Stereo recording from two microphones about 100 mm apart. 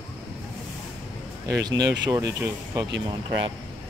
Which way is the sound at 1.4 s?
35° right (ahead or behind).